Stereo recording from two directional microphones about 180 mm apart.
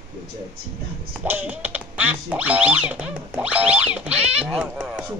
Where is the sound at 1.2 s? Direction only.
10° right (ahead or behind).